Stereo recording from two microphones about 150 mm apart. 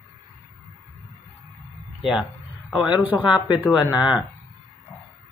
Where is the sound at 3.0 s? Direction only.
10° right (ahead or behind).